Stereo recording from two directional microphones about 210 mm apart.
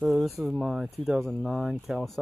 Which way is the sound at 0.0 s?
Centre (ahead or behind).